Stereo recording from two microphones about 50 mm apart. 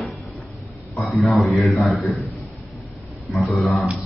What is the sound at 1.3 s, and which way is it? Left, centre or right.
Speech, centre.